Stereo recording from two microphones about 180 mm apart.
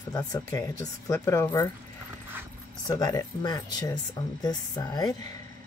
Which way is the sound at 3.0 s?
20° left (ahead or behind).